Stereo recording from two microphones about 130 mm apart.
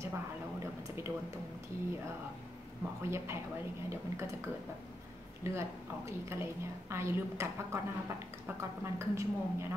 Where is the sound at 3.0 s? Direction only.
20° right (ahead or behind).